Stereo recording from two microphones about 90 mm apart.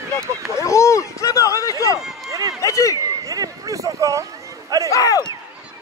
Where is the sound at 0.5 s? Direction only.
35° left (ahead or behind).